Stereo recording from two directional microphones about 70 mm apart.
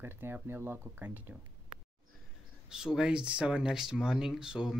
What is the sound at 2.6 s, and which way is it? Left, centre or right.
Speech, centre.